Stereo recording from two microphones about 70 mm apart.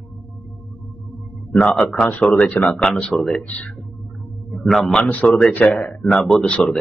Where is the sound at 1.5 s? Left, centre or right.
Left.